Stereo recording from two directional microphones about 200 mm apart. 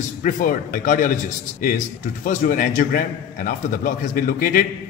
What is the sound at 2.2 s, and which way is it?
A man's voice, 45° left (ahead or behind).